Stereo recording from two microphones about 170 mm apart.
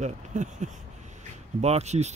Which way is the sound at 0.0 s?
45° right (ahead or behind).